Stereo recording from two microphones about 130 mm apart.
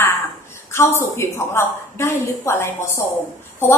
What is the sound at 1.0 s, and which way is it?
A woman's voice, 20° left (ahead or behind).